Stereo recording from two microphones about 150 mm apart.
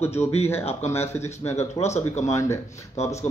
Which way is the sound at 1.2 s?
45° left (ahead or behind).